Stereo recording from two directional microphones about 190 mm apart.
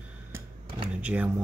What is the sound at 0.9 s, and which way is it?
Speech, 5° right (ahead or behind).